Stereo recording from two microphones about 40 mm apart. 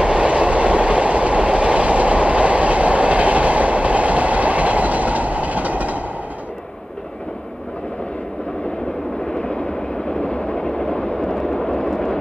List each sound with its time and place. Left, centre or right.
0.0 s train: right
9.3 s vehicle: left; by 12.2 s centre